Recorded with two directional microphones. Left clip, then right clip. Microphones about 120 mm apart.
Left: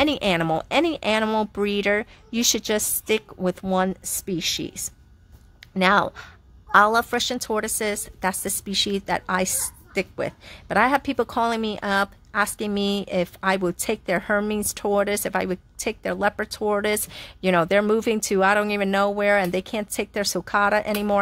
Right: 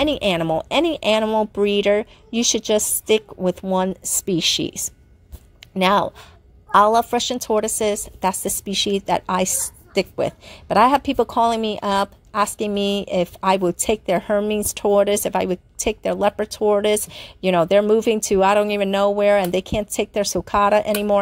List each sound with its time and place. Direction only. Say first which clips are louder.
0.0 s a woman's voice: right 2 dB; centre (ahead or behind)
1.2 s speech: right 4 dB; 5° left (ahead or behind)
1.6 s a woman's voice: right 7 dB; 5° right (ahead or behind)
4.0 s a woman's voice: right 7 dB; 25° right (ahead or behind)
5.6 s a sound: right 2 dB; 15° right (ahead or behind)
6.7 s a woman's voice: right 3 dB; 5° right (ahead or behind)